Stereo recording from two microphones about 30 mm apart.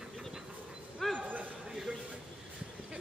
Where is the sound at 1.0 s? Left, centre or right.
Centre.